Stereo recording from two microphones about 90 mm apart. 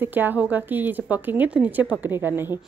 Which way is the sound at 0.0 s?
20° right (ahead or behind).